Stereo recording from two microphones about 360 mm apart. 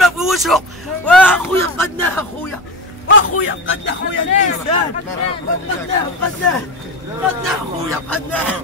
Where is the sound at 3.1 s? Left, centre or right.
Left.